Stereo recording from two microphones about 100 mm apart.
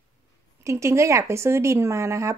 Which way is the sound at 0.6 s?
30° right (ahead or behind).